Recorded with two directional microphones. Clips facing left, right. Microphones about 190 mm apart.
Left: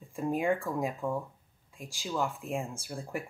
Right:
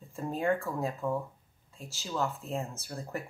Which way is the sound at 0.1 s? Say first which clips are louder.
Left 1 dB; 15° left (ahead or behind).